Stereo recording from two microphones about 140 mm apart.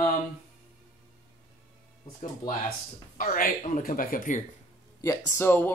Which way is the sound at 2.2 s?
70° left (ahead or behind).